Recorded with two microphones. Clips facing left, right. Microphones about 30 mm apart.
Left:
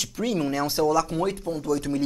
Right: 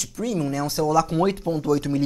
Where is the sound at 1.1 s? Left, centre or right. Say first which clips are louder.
Right 4 dB; right.